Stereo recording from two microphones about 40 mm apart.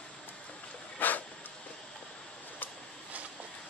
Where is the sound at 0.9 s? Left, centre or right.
Left.